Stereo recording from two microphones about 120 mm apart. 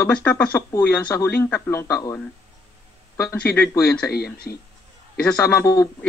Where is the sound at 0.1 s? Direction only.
10° left (ahead or behind).